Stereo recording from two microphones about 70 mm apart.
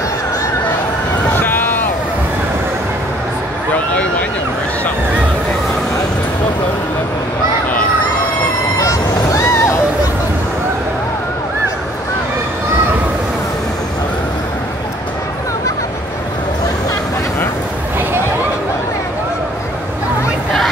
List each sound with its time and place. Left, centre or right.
1.3 s vehicle: left
3.7 s vehicle: centre
8.7 s vehicle: left